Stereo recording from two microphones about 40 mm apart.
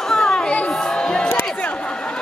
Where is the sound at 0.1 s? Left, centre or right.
Centre.